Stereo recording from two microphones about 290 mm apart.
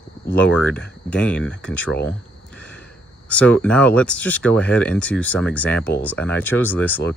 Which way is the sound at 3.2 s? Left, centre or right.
Centre.